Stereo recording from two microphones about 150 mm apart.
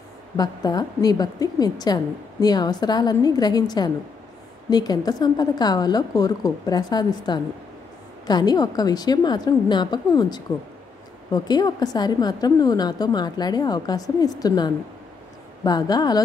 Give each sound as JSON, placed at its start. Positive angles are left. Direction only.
{"t": 0.4, "sound": "a woman's voice", "side_deg": 25}